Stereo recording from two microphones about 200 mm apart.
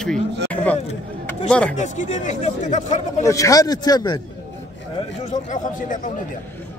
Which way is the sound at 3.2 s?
15° left (ahead or behind).